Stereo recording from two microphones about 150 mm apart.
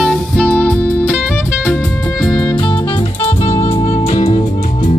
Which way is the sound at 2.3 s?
30° left (ahead or behind).